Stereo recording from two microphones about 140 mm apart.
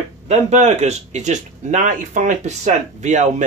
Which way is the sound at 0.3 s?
55° right (ahead or behind).